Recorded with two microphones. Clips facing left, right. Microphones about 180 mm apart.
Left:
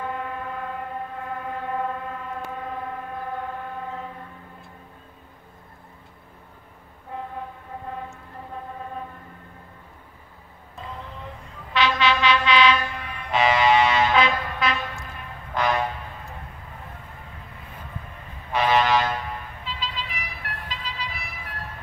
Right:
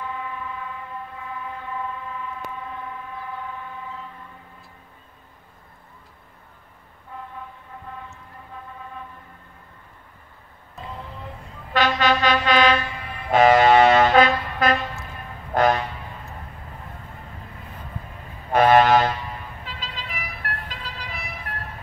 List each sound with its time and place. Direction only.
0.0 s train: 55° left (ahead or behind)
3.2 s train: 50° left (ahead or behind)
11.7 s vehicle: 45° right (ahead or behind)
15.5 s train: 50° right (ahead or behind)
18.5 s a sound: 50° right (ahead or behind)
19.6 s vehicle: 50° right (ahead or behind)